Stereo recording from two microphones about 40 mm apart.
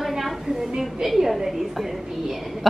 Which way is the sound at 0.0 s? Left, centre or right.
Centre.